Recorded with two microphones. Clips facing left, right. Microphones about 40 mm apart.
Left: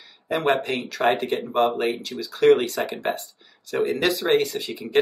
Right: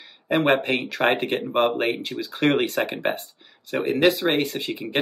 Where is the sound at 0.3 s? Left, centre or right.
Right.